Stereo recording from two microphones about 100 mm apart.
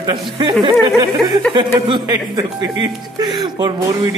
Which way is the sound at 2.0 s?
35° right (ahead or behind).